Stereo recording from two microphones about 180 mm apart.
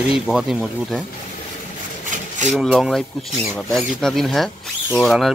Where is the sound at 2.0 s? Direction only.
45° right (ahead or behind).